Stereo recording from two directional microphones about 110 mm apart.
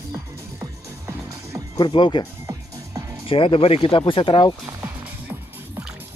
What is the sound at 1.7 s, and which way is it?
Speech, 45° left (ahead or behind).